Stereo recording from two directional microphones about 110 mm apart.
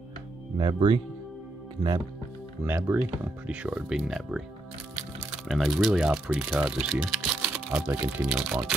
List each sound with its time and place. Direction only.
0.6 s speech: 50° right (ahead or behind)
2.6 s speech: 20° right (ahead or behind)
5.5 s speech: centre (ahead or behind)